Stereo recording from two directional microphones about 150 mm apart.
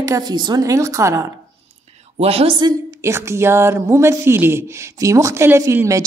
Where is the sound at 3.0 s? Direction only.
20° right (ahead or behind).